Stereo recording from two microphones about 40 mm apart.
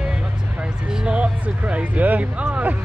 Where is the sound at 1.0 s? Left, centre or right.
Right.